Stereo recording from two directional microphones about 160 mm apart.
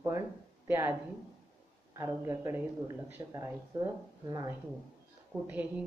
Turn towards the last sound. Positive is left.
turn(degrees=-10)  # may be behind; listen again after turning